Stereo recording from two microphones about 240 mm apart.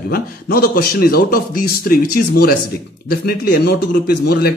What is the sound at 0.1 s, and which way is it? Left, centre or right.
A man's voice, left.